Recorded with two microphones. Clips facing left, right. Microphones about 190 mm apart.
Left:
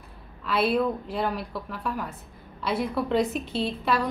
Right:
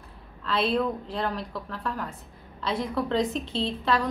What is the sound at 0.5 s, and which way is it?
A woman's voice, 10° left (ahead or behind).